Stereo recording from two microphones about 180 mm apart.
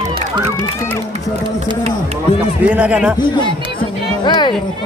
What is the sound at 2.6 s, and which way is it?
Speech, 10° right (ahead or behind).